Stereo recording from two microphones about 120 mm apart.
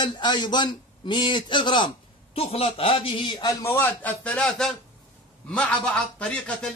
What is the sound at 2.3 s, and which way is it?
A man's voice, 55° left (ahead or behind).